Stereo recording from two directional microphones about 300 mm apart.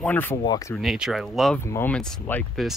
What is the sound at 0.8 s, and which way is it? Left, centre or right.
Speech, centre.